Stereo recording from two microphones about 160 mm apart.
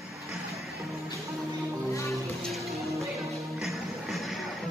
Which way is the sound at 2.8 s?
20° right (ahead or behind).